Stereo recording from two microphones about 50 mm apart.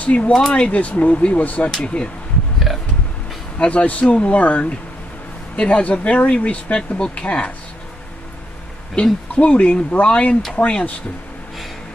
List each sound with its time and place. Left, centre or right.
0.0 s speech: left
0.3 s speech: centre
0.7 s speech: left
3.5 s speech: left
9.3 s speech: left